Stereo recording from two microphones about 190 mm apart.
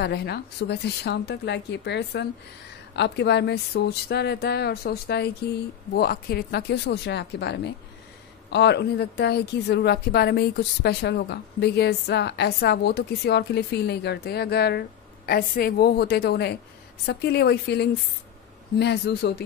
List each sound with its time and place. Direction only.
0.0 s speech: 60° left (ahead or behind)